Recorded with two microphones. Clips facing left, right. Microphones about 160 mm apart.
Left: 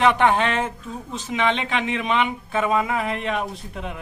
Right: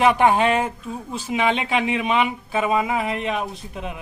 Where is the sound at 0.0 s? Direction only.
10° right (ahead or behind).